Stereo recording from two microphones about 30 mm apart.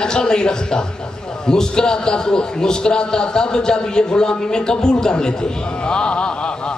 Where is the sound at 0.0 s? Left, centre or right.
Left.